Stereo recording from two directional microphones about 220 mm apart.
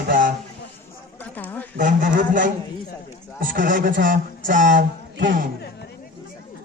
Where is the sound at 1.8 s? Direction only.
35° right (ahead or behind).